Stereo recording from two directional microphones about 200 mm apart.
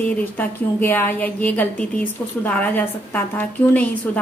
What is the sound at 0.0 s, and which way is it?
A woman's voice, 10° left (ahead or behind).